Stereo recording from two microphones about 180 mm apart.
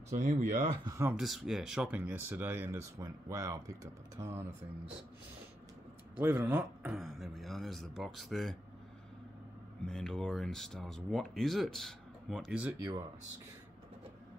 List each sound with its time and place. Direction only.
0.1 s speech: 40° right (ahead or behind)
0.8 s speech: 15° right (ahead or behind)
1.1 s speech: centre (ahead or behind)
6.1 s speech: 10° right (ahead or behind)
9.8 s speech: 5° left (ahead or behind)